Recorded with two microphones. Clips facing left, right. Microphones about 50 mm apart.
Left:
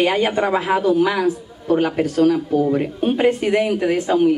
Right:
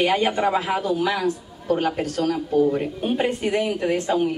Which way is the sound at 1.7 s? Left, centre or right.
Left.